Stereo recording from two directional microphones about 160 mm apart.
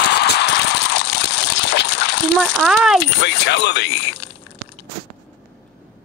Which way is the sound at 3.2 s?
90° left.